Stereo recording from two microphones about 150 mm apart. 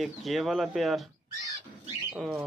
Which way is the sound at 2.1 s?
10° right (ahead or behind).